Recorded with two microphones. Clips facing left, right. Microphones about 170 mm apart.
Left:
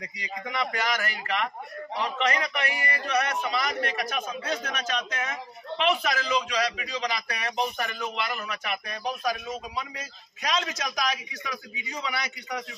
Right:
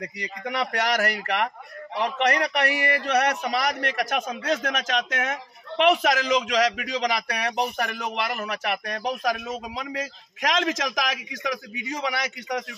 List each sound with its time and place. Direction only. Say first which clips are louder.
0.0 s a man's voice: right 4 dB; 65° right (ahead or behind)
4.3 s a man's voice: right 5 dB; 90° right; by 12.6 s 75° right (ahead or behind)